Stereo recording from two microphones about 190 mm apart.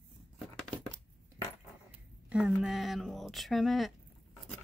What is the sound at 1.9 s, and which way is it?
Speech, 5° right (ahead or behind).